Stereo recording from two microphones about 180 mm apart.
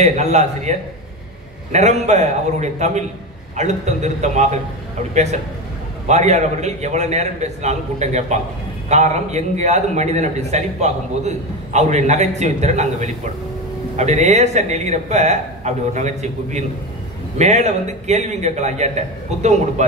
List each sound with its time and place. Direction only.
0.0 s a man's voice: 40° right (ahead or behind)